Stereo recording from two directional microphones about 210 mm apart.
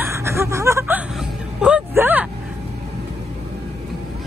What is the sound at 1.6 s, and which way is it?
Vehicle, 5° right (ahead or behind).